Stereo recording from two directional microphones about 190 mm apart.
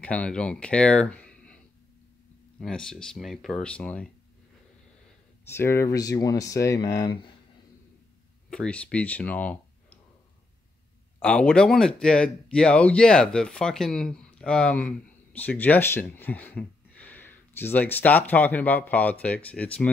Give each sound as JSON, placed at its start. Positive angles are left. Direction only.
{"t": 0.0, "sound": "speech", "side_deg": 5}
{"t": 2.6, "sound": "speech", "side_deg": 5}
{"t": 5.5, "sound": "speech", "side_deg": 15}
{"t": 8.5, "sound": "speech", "side_deg": 5}
{"t": 11.1, "sound": "speech", "side_deg": 5}